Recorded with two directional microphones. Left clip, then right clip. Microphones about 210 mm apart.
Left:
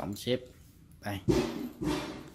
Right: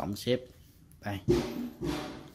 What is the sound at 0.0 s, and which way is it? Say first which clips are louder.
Speech: right 2 dB; 15° right (ahead or behind).